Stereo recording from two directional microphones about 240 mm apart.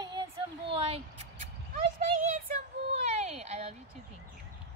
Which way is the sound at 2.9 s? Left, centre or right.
Right.